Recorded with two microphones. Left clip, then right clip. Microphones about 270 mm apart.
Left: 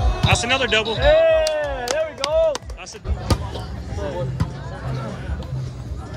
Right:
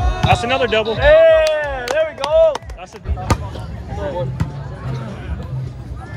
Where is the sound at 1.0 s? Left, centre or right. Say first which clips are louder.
Right 6 dB; right.